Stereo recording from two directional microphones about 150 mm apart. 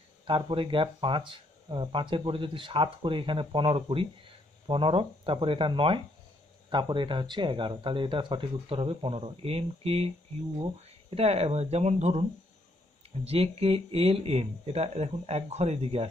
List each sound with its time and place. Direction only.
0.3 s speech: 35° right (ahead or behind)